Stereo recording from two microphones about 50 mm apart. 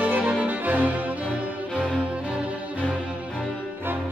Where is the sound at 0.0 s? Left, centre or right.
Right.